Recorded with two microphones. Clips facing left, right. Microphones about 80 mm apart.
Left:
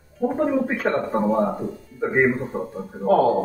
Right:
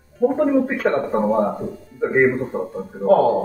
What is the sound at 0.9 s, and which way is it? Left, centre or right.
Speech, centre.